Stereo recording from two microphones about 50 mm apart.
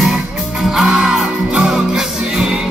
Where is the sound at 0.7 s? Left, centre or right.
Centre.